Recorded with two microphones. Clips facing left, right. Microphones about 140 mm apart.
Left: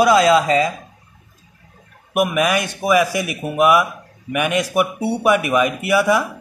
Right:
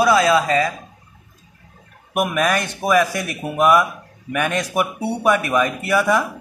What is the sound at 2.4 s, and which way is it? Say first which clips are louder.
A man's voice: left 1 dB; 10° left (ahead or behind).